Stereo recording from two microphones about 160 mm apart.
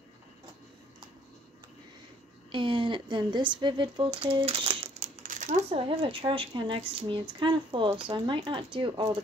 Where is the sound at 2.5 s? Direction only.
30° right (ahead or behind).